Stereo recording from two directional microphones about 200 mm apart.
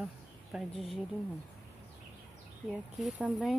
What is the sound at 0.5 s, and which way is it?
Speech, 5° right (ahead or behind).